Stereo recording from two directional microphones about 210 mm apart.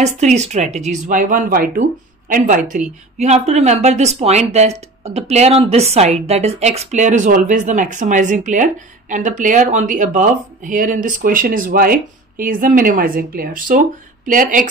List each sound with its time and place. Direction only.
0.0 s speech: 35° right (ahead or behind)